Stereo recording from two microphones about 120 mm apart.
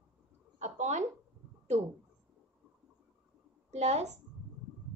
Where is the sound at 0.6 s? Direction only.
75° right (ahead or behind).